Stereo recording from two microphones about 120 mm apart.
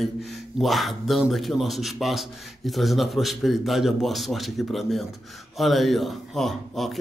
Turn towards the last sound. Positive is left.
turn(degrees=0)  # may be behind; listen again after turning